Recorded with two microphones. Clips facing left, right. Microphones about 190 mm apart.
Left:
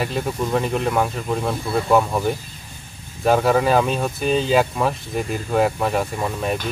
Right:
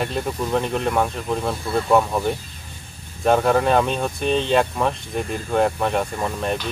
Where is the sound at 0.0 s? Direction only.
Centre (ahead or behind).